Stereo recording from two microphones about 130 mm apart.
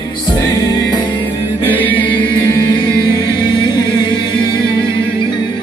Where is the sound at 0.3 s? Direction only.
30° left (ahead or behind).